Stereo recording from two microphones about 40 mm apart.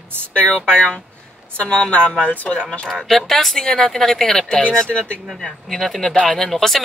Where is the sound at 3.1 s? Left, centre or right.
Centre.